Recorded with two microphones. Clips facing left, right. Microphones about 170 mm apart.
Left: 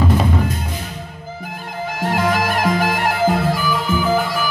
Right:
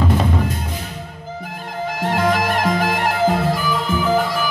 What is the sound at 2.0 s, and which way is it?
Music, 10° left (ahead or behind).